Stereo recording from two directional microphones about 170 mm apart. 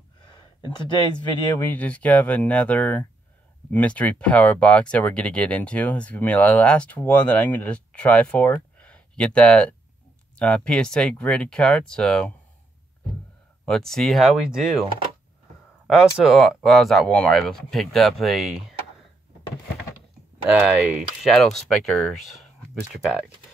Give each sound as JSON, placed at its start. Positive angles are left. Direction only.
{"t": 0.7, "sound": "speech", "side_deg": 25}
{"t": 1.6, "sound": "speech", "side_deg": 10}
{"t": 13.7, "sound": "speech", "side_deg": 0}
{"t": 16.0, "sound": "speech", "side_deg": 0}
{"t": 20.4, "sound": "speech", "side_deg": -10}